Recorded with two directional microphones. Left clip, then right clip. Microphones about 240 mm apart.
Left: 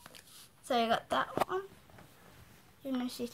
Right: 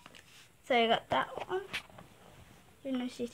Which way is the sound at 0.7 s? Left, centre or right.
Centre.